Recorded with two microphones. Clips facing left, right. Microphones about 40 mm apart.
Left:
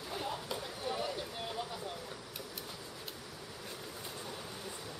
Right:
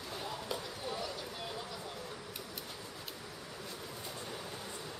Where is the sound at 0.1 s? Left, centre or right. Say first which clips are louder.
Left 1 dB; centre.